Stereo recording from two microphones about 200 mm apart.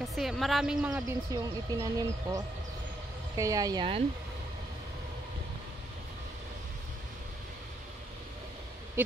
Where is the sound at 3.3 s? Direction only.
15° right (ahead or behind).